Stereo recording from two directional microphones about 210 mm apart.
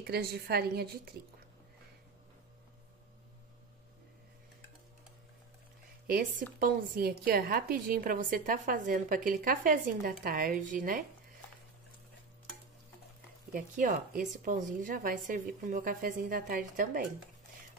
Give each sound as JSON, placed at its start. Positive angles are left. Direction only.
{"t": 0.0, "sound": "a woman's voice", "side_deg": -45}
{"t": 6.0, "sound": "a woman's voice", "side_deg": -45}
{"t": 13.5, "sound": "speech", "side_deg": -40}